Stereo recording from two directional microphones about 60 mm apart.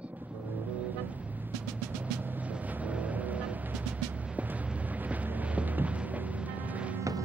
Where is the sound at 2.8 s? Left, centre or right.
Right.